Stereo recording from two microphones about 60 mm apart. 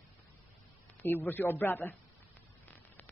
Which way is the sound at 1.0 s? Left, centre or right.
Left.